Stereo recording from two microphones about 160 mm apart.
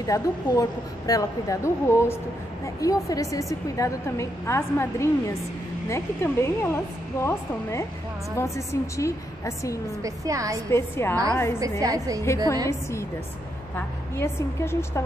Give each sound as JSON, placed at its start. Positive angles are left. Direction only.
{"t": 0.0, "sound": "a woman's voice", "side_deg": 20}
{"t": 10.0, "sound": "a woman's voice", "side_deg": -20}
{"t": 10.7, "sound": "a woman's voice", "side_deg": 15}
{"t": 11.8, "sound": "a woman's voice", "side_deg": -20}
{"t": 13.7, "sound": "a woman's voice", "side_deg": 15}